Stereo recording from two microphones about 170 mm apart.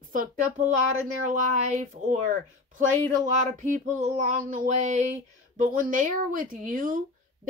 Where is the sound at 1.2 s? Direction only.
45° right (ahead or behind).